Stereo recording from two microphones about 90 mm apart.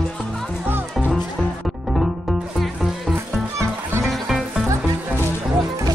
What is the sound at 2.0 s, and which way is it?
Music, centre (ahead or behind).